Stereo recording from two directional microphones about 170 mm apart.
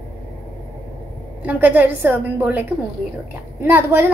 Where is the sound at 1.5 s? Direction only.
10° right (ahead or behind).